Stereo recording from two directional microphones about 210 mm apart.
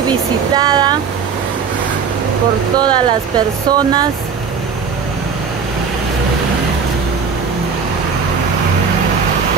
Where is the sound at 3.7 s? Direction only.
20° right (ahead or behind).